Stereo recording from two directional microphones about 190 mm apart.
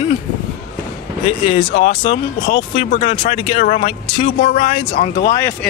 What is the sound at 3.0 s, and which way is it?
Speech, 25° left (ahead or behind).